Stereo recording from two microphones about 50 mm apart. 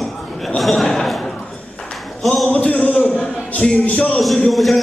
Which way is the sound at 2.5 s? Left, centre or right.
Left.